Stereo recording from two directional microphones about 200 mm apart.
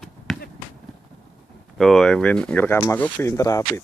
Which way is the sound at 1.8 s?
Centre (ahead or behind).